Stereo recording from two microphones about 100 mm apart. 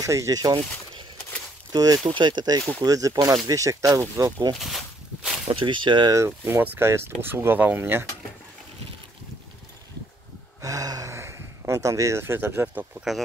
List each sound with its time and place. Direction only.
0.0 s speech: 30° right (ahead or behind)
1.7 s speech: 40° right (ahead or behind)
2.0 s speech: 50° right (ahead or behind)
4.6 s walk: centre (ahead or behind)
5.5 s speech: 55° right (ahead or behind)
6.1 s speech: 30° right (ahead or behind)
10.6 s a sound: 35° right (ahead or behind)
12.6 s speech: 15° right (ahead or behind)